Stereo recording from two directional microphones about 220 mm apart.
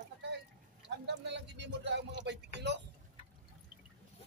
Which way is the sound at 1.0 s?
50° right (ahead or behind).